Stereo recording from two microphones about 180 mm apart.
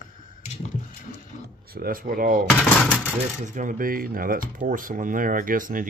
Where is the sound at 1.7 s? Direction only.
55° right (ahead or behind).